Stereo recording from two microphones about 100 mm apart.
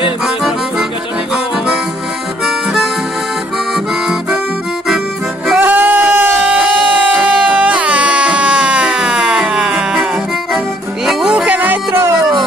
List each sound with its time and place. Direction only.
2.4 s harmonica: centre (ahead or behind)
3.7 s music: 5° right (ahead or behind)
5.6 s a sound: 20° right (ahead or behind)
7.2 s music: 10° right (ahead or behind)
11.1 s music: 5° right (ahead or behind)